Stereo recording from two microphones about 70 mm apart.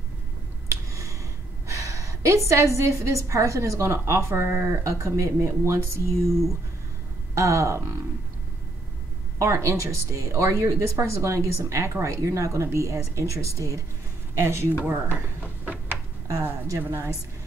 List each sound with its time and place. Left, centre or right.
1.7 s a woman's voice: right
7.3 s a woman's voice: right
9.4 s a woman's voice: right
16.8 s speech: right